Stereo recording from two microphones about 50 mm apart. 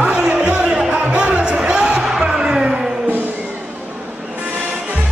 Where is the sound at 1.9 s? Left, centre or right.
Centre.